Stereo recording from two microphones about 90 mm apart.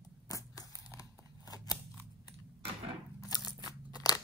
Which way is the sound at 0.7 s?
35° left (ahead or behind).